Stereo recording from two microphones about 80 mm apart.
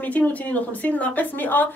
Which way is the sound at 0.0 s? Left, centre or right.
Centre.